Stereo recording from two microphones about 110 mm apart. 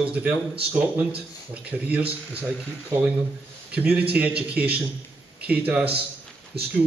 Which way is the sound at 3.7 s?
15° right (ahead or behind).